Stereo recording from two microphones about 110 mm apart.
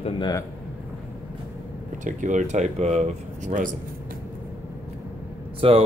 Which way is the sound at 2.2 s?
90° right.